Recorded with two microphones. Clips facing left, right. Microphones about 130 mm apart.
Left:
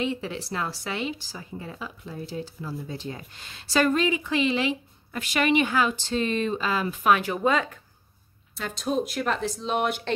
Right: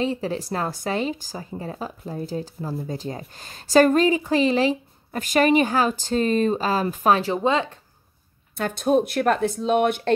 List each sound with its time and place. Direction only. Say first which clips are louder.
0.0 s speech: right 4 dB; 40° right (ahead or behind)
8.5 s speech: right 7 dB; 55° right (ahead or behind)